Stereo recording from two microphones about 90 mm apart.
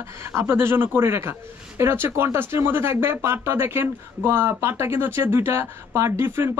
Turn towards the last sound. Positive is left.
turn(degrees=-25)  # may be behind; listen again after turning